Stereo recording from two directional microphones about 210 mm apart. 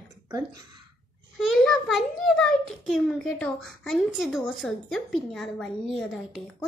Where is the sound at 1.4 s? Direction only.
Centre (ahead or behind).